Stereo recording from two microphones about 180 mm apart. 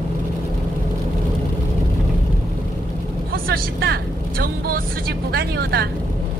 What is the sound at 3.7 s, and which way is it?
A woman's voice, 60° right (ahead or behind).